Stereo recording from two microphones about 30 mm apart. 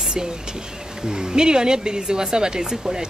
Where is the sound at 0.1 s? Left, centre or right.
Right.